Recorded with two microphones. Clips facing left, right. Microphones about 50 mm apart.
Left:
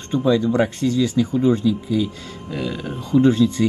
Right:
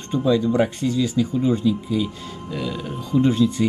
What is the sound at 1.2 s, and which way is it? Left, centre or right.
Speech, left.